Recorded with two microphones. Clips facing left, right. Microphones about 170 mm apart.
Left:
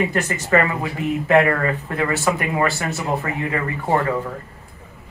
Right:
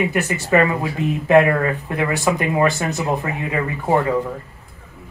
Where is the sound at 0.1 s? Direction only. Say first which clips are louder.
Right 1 dB; 10° right (ahead or behind).